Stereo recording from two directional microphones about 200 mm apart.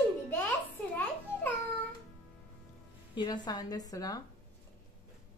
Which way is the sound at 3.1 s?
20° left (ahead or behind).